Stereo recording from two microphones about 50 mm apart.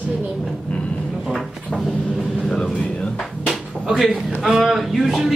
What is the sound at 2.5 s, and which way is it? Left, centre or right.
Speech, centre.